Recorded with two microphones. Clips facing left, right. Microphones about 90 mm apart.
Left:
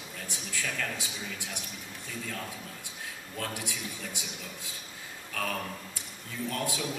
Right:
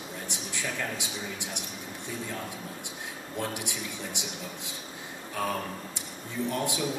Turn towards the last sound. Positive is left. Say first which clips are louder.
# right 3 dB
turn(degrees=-20)  # may be behind; listen again after turning